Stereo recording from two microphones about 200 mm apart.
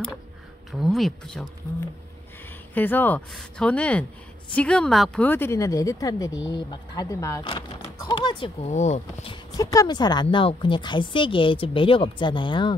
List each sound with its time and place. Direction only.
0.7 s speech: centre (ahead or behind)
2.7 s speech: 10° left (ahead or behind)